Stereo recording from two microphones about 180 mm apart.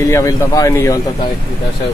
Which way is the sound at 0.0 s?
20° left (ahead or behind).